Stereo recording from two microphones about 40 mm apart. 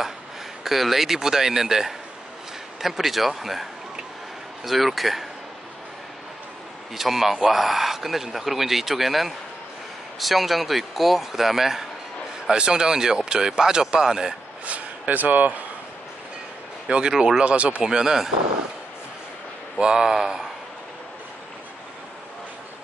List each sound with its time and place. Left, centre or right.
0.7 s speech: centre
4.6 s speech: centre
7.0 s speech: centre
12.4 s speech: centre
14.7 s speech: right
16.9 s speech: right
17.8 s speech: centre
19.8 s speech: centre